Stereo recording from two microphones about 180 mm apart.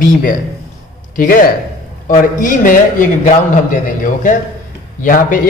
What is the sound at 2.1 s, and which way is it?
A man's voice, 45° left (ahead or behind).